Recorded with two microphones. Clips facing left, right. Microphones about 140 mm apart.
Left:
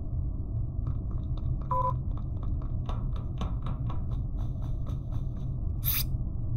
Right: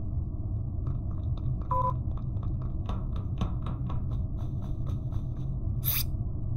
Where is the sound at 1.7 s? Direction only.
Centre (ahead or behind).